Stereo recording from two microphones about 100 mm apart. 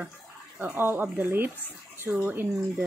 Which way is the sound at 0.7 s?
20° right (ahead or behind).